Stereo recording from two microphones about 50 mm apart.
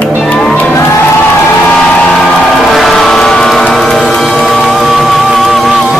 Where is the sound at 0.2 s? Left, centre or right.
Centre.